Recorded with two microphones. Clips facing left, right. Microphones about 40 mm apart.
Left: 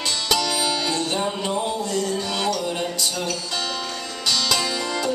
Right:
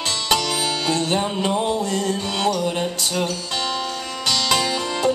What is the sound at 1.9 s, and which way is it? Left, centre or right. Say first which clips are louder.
Music: right 1 dB; right.